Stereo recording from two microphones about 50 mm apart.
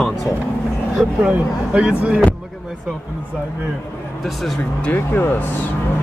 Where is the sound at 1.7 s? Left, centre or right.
Right.